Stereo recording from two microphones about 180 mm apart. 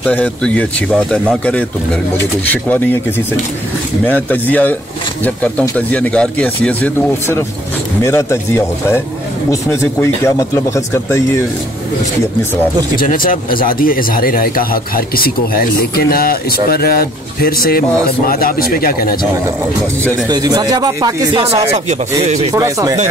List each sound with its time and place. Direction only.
0.0 s speech: 5° left (ahead or behind)
4.0 s speech: 10° left (ahead or behind)
12.9 s speech: 50° left (ahead or behind)
20.2 s speech: 20° right (ahead or behind)
22.2 s speech: 40° right (ahead or behind)
22.5 s speech: 20° right (ahead or behind)